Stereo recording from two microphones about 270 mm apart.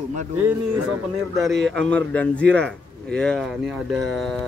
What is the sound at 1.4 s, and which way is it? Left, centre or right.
A man's voice, centre.